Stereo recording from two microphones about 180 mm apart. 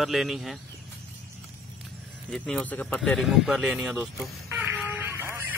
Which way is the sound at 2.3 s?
5° left (ahead or behind).